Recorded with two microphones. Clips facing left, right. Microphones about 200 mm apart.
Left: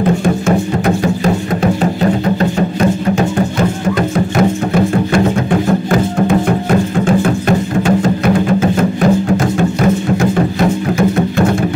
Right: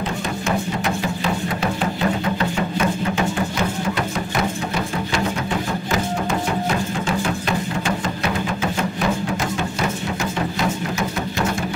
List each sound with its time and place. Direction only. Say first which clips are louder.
0.0 s music: left 11 dB; 50° left (ahead or behind)
2.8 s music: left 8 dB; 40° left (ahead or behind)